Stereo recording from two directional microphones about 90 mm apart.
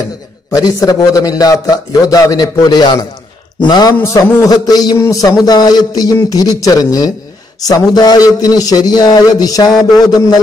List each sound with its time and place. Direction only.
0.6 s a man's voice: 45° left (ahead or behind)
4.0 s a man's voice: 40° left (ahead or behind)